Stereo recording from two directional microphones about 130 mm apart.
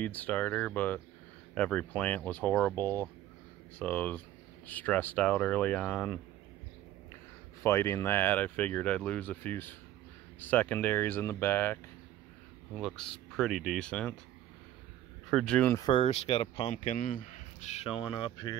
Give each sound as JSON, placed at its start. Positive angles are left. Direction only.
{"t": 0.0, "sound": "speech", "side_deg": 10}
{"t": 7.6, "sound": "speech", "side_deg": 20}
{"t": 12.7, "sound": "speech", "side_deg": 0}
{"t": 15.2, "sound": "speech", "side_deg": 5}
{"t": 15.8, "sound": "speech", "side_deg": 40}
{"t": 16.7, "sound": "speech", "side_deg": 70}
{"t": 17.8, "sound": "speech", "side_deg": 45}